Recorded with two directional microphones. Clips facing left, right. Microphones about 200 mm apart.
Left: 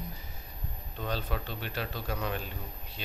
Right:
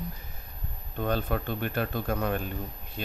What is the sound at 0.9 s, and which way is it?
Speech, 50° right (ahead or behind).